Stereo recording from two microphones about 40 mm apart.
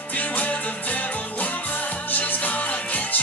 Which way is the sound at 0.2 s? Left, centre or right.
Left.